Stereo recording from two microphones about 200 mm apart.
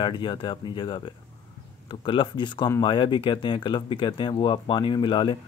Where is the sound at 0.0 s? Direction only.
25° left (ahead or behind).